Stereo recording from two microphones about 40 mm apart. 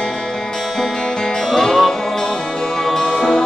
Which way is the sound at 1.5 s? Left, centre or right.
Centre.